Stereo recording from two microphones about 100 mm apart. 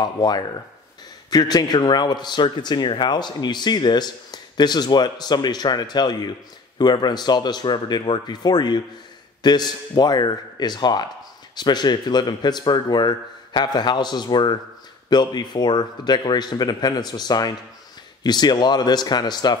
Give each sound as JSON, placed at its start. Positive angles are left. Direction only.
{"t": 0.0, "sound": "a man's voice", "side_deg": 45}